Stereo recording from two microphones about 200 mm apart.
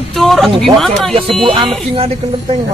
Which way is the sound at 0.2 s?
Centre (ahead or behind).